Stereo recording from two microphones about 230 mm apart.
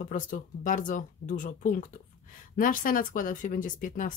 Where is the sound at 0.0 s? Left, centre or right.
Left.